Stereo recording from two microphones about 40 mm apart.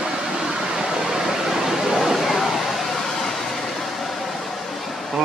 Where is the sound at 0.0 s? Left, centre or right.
Centre.